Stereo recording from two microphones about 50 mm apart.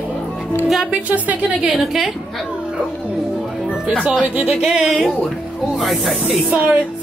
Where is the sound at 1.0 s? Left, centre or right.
Right.